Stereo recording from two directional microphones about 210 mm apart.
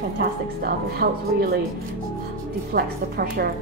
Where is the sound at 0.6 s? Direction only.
45° right (ahead or behind).